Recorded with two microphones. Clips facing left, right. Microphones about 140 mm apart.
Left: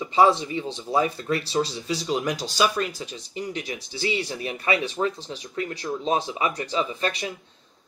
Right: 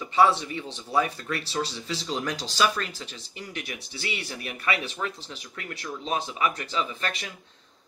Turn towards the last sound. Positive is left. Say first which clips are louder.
# left 5 dB
turn(degrees=20)  # may be behind; listen again after turning